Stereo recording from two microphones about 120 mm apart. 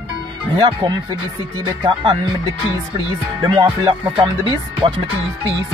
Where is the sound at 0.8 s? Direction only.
35° right (ahead or behind).